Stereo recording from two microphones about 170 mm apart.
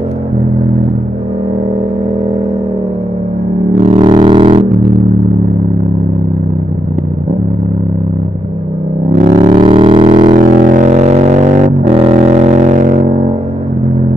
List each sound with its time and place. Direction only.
3.7 s vehicle: 35° right (ahead or behind)
9.2 s a sound: 35° right (ahead or behind)
10.3 s music: 45° right (ahead or behind)